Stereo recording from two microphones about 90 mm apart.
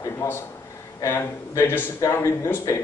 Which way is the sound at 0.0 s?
35° left (ahead or behind).